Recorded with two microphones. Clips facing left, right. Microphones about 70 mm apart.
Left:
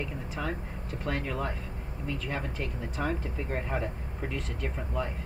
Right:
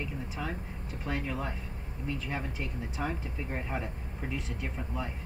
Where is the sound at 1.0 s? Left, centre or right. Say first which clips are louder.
Left 2 dB; centre.